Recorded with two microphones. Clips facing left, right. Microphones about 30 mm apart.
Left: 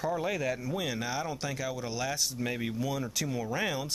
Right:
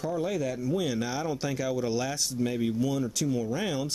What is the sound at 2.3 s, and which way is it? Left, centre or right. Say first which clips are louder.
Speech: right 5 dB; centre.